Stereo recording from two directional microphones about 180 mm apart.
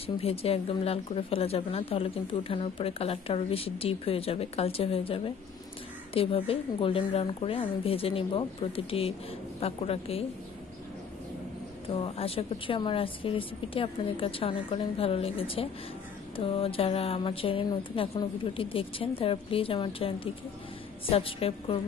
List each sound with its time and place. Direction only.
0.0 s speech: 35° left (ahead or behind)
11.9 s speech: 30° left (ahead or behind)